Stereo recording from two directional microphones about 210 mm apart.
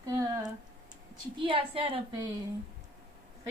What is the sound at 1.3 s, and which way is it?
Speech, 25° right (ahead or behind).